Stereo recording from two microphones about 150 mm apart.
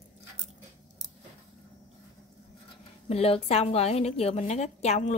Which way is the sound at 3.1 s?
40° left (ahead or behind).